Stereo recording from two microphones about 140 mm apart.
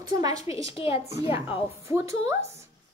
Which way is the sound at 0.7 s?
40° left (ahead or behind).